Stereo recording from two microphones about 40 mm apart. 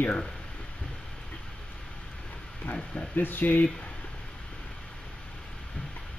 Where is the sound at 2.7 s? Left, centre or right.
Left.